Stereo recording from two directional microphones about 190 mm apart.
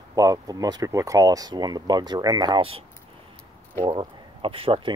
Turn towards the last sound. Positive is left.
turn(degrees=-30)  # may be behind; listen again after turning